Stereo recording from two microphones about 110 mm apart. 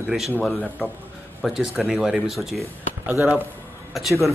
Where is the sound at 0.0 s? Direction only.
5° right (ahead or behind).